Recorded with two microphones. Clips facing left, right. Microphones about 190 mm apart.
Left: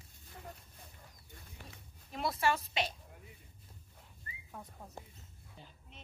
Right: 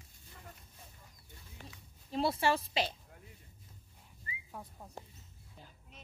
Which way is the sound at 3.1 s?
Centre (ahead or behind).